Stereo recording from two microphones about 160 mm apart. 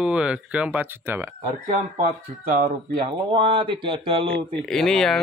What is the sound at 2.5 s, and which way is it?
Speech, 60° right (ahead or behind).